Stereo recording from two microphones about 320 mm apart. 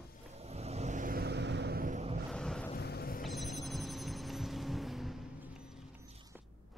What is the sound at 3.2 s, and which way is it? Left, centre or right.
Telephone bell ringing, centre.